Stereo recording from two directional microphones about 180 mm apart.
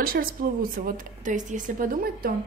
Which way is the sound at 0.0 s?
55° right (ahead or behind).